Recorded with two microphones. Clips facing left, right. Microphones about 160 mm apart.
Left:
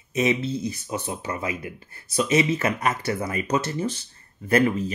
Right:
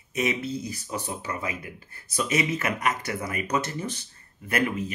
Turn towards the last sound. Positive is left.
turn(degrees=35)  # may be behind; listen again after turning